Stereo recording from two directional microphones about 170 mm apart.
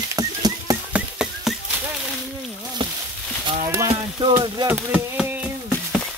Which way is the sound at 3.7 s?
20° right (ahead or behind).